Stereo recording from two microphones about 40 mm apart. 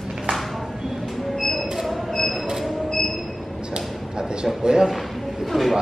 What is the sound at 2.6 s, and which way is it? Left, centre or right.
Train, centre.